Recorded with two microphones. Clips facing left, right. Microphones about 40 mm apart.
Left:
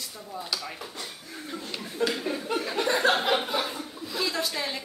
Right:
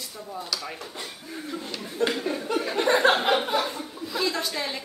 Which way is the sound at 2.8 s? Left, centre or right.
Right.